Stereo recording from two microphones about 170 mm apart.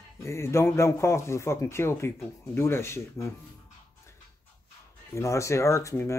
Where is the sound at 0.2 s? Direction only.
15° left (ahead or behind).